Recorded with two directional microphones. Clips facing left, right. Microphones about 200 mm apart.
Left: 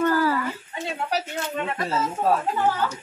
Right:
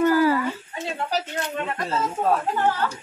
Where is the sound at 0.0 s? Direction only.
15° right (ahead or behind).